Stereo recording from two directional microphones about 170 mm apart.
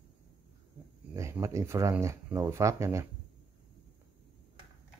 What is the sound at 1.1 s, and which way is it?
Speech, 15° right (ahead or behind).